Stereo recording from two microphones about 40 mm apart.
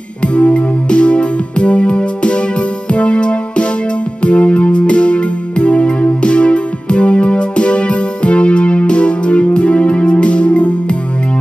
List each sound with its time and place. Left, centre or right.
0.2 s music: left